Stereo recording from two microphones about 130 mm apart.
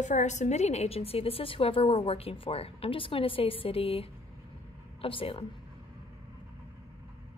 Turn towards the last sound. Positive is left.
turn(degrees=45)  # may be behind; listen again after turning